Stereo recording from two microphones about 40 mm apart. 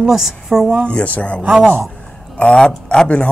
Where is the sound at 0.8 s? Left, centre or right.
Left.